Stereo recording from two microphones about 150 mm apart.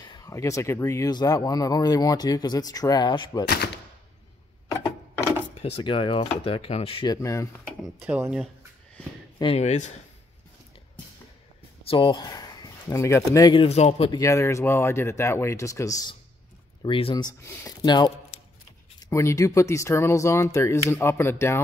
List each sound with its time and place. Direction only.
0.0 s a sound: 30° left (ahead or behind)
0.3 s speech: 20° left (ahead or behind)
5.2 s speech: 40° left (ahead or behind)
7.1 s speech: 20° left (ahead or behind)
8.0 s speech: 10° right (ahead or behind)
9.4 s speech: 45° left (ahead or behind)
11.8 s speech: 35° left (ahead or behind)
13.6 s speech: 45° left (ahead or behind)
14.1 s speech: 20° left (ahead or behind)
16.8 s speech: 35° left (ahead or behind); by 21.5 s 15° left (ahead or behind)